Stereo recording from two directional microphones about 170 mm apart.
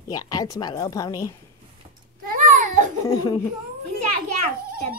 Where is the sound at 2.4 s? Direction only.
50° right (ahead or behind).